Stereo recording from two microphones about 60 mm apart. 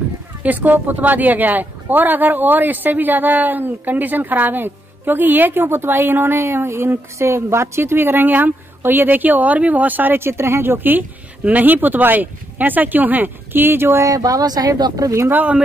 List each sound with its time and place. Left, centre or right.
0.4 s speech: right
14.0 s speech: right